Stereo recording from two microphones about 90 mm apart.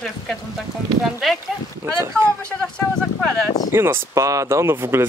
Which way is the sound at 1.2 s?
Centre (ahead or behind).